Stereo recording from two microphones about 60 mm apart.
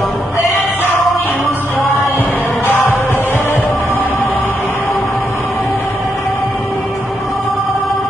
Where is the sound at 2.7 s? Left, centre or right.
Left.